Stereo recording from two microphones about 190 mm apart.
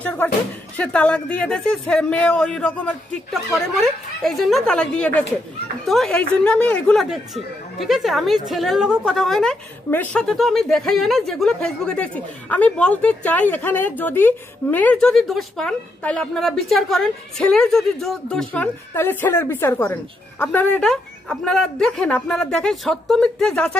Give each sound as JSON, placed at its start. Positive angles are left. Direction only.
{"t": 0.7, "sound": "speech", "side_deg": 5}